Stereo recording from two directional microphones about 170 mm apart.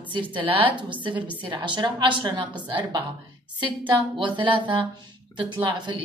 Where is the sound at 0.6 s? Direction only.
30° right (ahead or behind).